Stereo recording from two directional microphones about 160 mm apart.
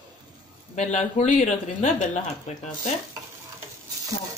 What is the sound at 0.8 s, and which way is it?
Speech, 45° left (ahead or behind).